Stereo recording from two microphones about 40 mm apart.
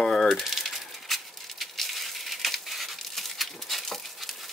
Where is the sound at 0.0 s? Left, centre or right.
Centre.